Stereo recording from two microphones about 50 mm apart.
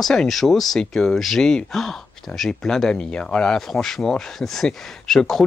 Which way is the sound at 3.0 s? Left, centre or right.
Centre.